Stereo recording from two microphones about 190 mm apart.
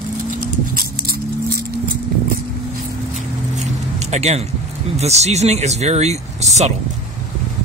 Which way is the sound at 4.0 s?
35° right (ahead or behind).